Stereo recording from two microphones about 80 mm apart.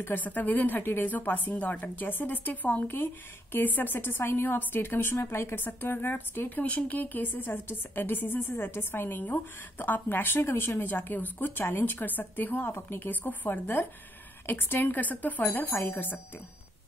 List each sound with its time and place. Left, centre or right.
0.0 s a woman's voice: left